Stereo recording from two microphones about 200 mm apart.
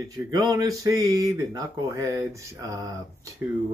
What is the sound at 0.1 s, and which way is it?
Speech, 20° right (ahead or behind).